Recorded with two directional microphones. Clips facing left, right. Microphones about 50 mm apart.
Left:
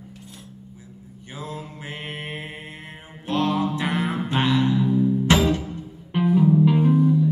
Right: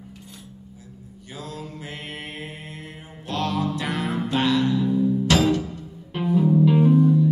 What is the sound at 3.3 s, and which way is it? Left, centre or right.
Music, left.